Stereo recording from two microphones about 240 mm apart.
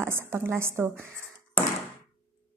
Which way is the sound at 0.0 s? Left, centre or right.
Centre.